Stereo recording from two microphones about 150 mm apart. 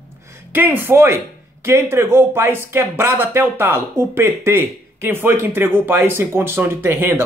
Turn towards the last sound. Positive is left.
turn(degrees=-15)  # may be behind; listen again after turning